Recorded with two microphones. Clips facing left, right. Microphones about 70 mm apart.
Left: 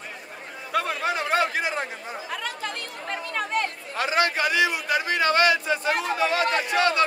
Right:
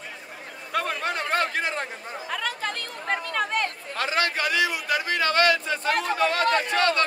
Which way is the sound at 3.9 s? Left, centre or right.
Centre.